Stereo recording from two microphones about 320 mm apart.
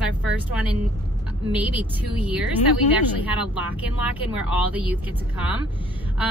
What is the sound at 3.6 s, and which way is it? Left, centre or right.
Speech, centre.